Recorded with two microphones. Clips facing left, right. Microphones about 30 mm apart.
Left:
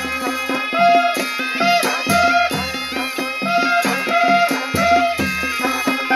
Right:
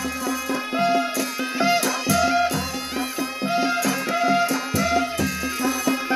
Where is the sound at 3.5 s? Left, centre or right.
Left.